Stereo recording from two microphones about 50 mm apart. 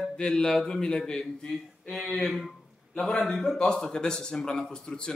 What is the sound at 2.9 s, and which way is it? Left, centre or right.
A man's voice, centre.